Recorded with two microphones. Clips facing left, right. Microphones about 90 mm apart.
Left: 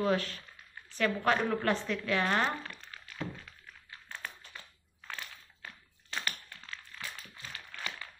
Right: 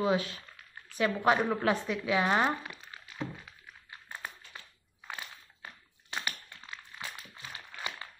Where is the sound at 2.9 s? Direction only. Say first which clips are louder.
Right 2 dB; 15° right (ahead or behind).